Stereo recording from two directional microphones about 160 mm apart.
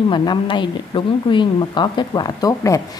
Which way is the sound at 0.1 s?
30° left (ahead or behind).